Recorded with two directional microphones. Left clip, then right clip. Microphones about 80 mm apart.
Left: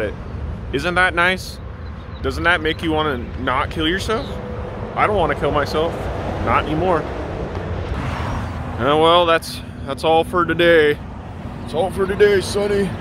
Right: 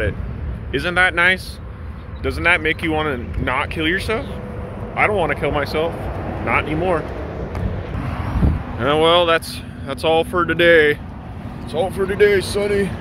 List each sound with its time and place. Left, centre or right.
0.7 s speech: left
6.0 s vehicle: left
6.4 s speech: left
7.0 s vehicle: centre
7.7 s speech: left
11.7 s speech: left